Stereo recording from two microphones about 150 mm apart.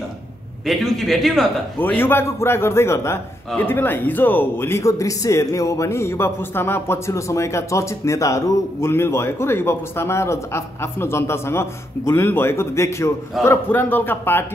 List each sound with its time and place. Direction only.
0.7 s a man's voice: centre (ahead or behind)
1.8 s a man's voice: 15° left (ahead or behind)